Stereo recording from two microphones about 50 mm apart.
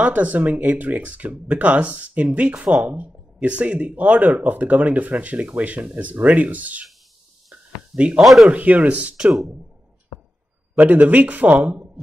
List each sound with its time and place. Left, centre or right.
0.0 s speech: right
7.9 s speech: right
8.2 s speech: centre
8.5 s speech: right
10.8 s speech: right